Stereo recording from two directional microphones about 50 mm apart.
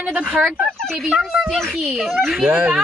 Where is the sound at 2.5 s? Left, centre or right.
Right.